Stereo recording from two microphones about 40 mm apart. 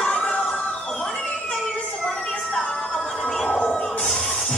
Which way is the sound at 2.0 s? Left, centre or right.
Left.